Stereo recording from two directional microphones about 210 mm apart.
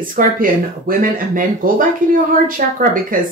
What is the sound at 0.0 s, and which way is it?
Speech, 40° right (ahead or behind).